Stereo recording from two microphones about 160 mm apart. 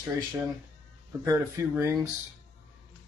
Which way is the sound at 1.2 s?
20° right (ahead or behind).